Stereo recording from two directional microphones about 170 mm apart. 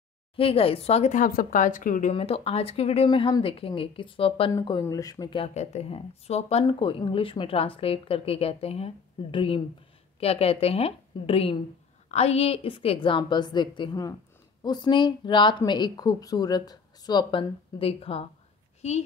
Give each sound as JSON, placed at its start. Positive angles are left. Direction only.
{"t": 0.4, "sound": "speech", "side_deg": 35}
{"t": 2.1, "sound": "a woman's voice", "side_deg": 35}
{"t": 5.4, "sound": "a woman's voice", "side_deg": 40}